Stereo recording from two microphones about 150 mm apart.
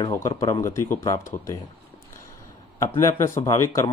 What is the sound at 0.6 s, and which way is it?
Speech, 20° left (ahead or behind).